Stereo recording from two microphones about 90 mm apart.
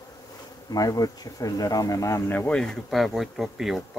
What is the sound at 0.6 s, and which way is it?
Speech, 45° left (ahead or behind).